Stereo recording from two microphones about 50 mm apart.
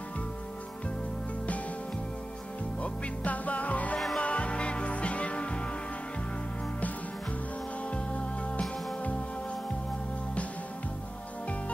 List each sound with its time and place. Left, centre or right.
2.8 s music: left
7.9 s music: left